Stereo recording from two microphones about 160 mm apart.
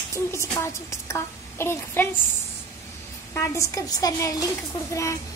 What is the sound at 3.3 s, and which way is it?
Child singing, 15° left (ahead or behind).